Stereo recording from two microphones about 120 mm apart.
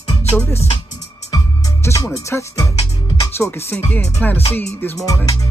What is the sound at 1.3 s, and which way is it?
Music, 25° left (ahead or behind).